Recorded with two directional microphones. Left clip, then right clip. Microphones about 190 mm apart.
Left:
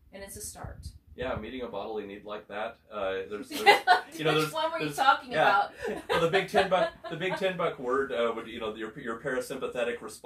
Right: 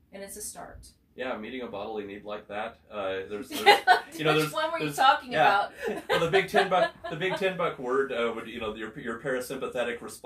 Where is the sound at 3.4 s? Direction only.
5° left (ahead or behind).